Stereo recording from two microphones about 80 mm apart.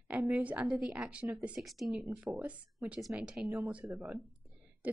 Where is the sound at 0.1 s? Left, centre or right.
Right.